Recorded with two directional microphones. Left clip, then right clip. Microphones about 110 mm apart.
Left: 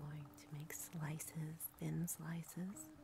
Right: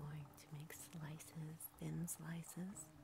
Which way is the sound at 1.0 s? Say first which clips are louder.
Left 6 dB; 35° left (ahead or behind).